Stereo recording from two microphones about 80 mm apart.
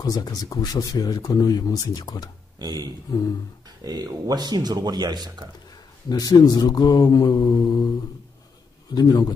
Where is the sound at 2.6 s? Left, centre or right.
Right.